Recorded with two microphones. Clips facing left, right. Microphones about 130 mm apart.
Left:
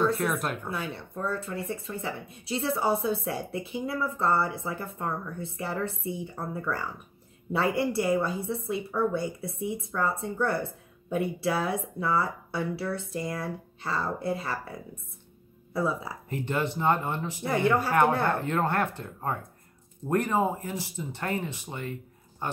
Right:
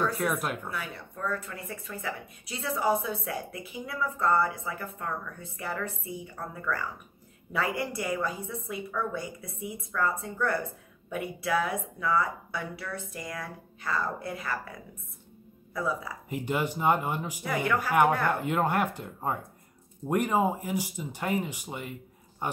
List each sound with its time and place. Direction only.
0.1 s speech: centre (ahead or behind)
0.7 s speech: 25° left (ahead or behind)
16.3 s speech: 10° right (ahead or behind)
17.5 s speech: 30° left (ahead or behind)
18.4 s speech: 10° right (ahead or behind)